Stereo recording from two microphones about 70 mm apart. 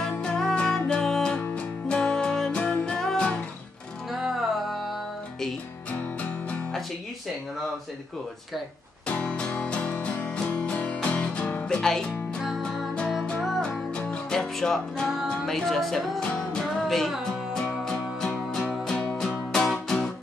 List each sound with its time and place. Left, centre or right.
0.2 s music: centre
4.1 s music: centre
9.0 s music: centre
13.6 s music: centre
15.2 s speech: centre
16.2 s music: centre